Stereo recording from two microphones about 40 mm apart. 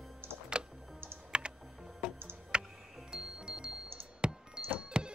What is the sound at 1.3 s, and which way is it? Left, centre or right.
Computer keyboard, right.